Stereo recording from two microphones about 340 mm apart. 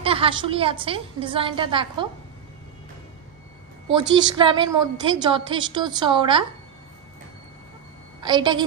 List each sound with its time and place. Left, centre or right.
0.0 s a woman's voice: centre
4.4 s a woman's voice: centre
8.2 s a woman's voice: centre